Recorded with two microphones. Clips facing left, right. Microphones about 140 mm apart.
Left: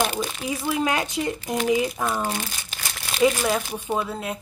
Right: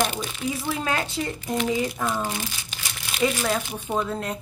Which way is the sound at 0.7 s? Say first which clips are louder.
Left 6 dB; 15° left (ahead or behind).